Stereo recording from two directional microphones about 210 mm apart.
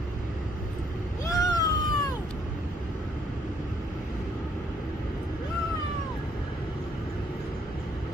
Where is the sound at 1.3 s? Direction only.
15° left (ahead or behind).